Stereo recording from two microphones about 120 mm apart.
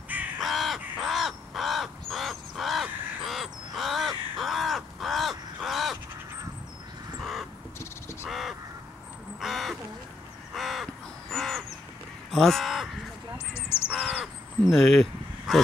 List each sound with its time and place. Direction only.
0.4 s crow: centre (ahead or behind)
7.2 s crow: centre (ahead or behind)
7.8 s crow: 20° left (ahead or behind)
8.3 s crow: centre (ahead or behind)
13.6 s crow: 20° left (ahead or behind)
14.7 s speech: centre (ahead or behind)